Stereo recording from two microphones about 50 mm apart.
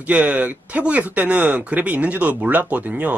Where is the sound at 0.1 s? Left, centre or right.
Right.